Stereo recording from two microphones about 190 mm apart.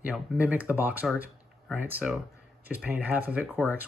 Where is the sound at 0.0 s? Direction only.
5° right (ahead or behind).